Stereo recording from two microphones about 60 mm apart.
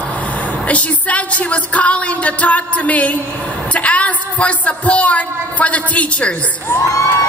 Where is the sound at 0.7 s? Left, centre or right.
Left.